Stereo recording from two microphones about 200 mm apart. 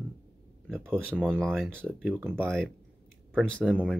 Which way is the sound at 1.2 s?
5° left (ahead or behind).